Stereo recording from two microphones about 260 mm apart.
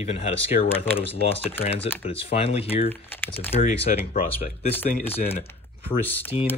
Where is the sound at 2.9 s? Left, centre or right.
Centre.